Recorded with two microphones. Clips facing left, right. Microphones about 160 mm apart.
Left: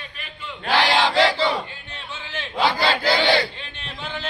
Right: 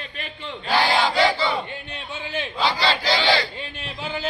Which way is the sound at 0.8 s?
90° left.